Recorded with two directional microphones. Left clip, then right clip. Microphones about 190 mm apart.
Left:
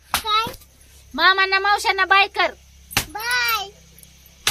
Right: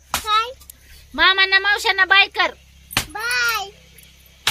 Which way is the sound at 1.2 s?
15° right (ahead or behind).